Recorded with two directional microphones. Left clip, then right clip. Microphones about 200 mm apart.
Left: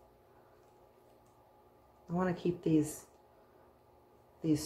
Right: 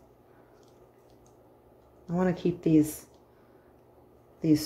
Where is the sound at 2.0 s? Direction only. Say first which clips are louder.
Right 6 dB; 25° right (ahead or behind).